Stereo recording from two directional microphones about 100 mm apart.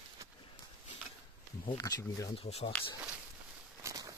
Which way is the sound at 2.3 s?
80° left.